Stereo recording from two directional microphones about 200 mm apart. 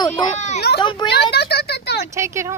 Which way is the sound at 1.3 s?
55° left (ahead or behind).